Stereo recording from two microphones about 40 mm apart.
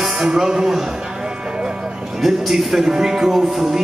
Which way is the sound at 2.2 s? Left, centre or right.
Centre.